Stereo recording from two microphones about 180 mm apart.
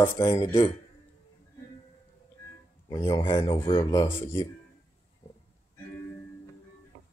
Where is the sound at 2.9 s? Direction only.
25° left (ahead or behind).